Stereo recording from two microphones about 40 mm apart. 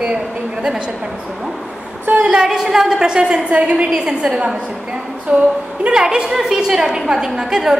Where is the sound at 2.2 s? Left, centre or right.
Centre.